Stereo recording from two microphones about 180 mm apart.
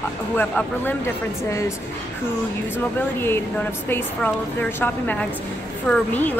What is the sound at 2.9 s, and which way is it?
Speech, 10° left (ahead or behind).